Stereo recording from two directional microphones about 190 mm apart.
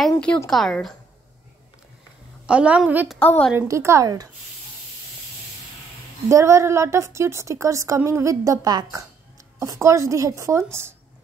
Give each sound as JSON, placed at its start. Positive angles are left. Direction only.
{"t": 0.0, "sound": "a woman's voice", "side_deg": 5}
{"t": 2.4, "sound": "a woman's voice", "side_deg": -5}
{"t": 6.2, "sound": "a woman's voice", "side_deg": -15}